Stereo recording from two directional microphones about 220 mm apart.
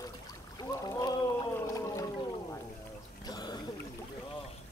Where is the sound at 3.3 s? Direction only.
20° left (ahead or behind).